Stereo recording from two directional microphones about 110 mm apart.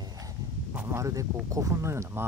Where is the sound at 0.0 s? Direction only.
35° right (ahead or behind).